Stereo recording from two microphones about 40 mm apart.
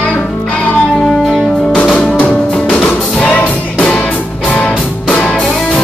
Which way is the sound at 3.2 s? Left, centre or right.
Left.